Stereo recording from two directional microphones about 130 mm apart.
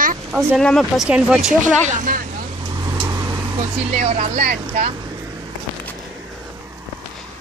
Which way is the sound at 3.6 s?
50° right (ahead or behind).